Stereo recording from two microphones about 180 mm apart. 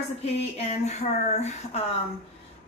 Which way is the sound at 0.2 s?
35° left (ahead or behind).